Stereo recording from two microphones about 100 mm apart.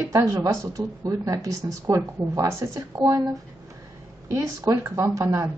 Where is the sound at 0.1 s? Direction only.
35° right (ahead or behind).